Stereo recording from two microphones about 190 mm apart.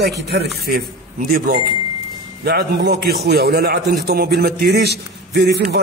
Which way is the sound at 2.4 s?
55° right (ahead or behind).